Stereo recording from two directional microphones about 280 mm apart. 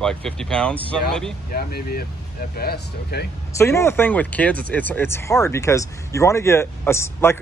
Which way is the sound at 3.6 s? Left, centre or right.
Centre.